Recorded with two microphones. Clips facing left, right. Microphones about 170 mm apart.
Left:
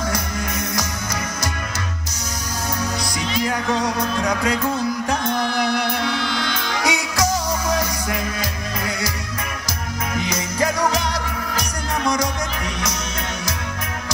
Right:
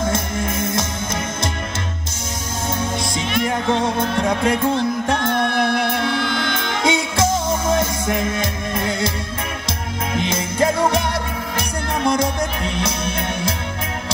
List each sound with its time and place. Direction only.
0.0 s music: 25° right (ahead or behind)
2.8 s music: 25° right (ahead or behind)
5.2 s music: 60° right (ahead or behind)
6.7 s music: 25° right (ahead or behind)
10.1 s music: 25° right (ahead or behind)